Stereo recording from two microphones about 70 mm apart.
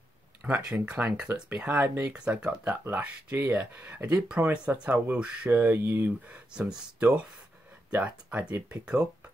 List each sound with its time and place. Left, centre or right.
0.4 s speech: right
1.7 s speech: right
2.1 s speech: centre
3.3 s speech: right
5.5 s speech: right
7.0 s speech: centre